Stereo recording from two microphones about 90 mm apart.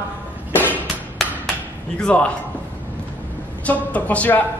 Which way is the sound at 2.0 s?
10° left (ahead or behind).